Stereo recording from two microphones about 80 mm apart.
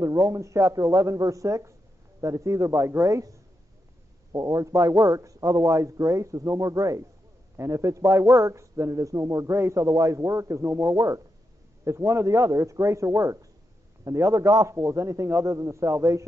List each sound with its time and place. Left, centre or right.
0.0 s a man's voice: right